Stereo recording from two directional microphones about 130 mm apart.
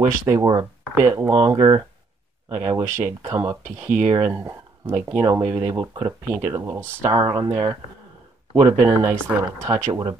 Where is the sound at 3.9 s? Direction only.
65° right (ahead or behind).